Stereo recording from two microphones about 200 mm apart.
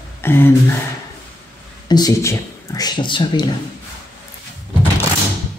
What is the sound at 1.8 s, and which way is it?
Speech, 20° left (ahead or behind).